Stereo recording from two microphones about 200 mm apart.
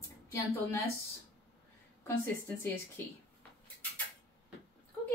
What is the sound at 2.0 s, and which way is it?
Speech, 15° left (ahead or behind).